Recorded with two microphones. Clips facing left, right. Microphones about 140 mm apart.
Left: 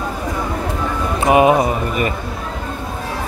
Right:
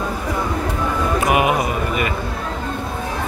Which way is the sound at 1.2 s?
30° left (ahead or behind).